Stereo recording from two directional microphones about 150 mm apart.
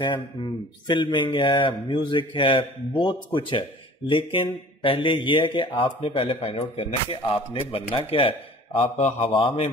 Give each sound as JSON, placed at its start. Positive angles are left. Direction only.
{"t": 0.0, "sound": "speech", "side_deg": 30}
{"t": 8.7, "sound": "speech", "side_deg": 50}